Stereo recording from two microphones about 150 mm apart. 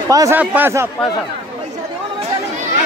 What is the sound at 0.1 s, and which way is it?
Speech, 25° right (ahead or behind).